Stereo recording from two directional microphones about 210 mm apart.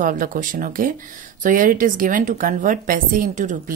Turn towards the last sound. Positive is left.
turn(degrees=-35)  # may be behind; listen again after turning